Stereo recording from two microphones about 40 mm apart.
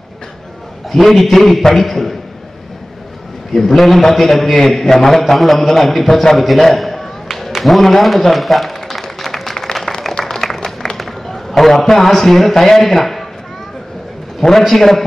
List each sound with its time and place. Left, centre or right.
0.9 s a man's voice: centre
3.5 s a man's voice: centre
9.2 s a sound: centre
10.0 s music: centre
11.0 s a man's voice: centre
14.7 s a man's voice: centre